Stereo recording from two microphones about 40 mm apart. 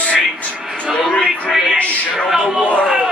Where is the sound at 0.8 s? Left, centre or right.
Centre.